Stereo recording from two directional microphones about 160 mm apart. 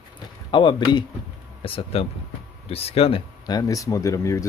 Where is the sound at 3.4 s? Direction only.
25° left (ahead or behind).